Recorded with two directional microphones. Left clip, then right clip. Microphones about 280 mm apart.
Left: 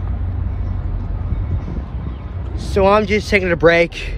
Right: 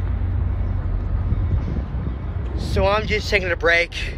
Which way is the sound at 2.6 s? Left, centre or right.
Centre.